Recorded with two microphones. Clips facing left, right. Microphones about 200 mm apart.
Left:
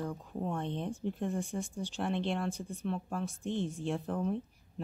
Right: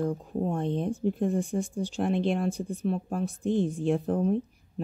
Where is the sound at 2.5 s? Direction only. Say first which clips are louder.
Right 7 dB; 35° right (ahead or behind).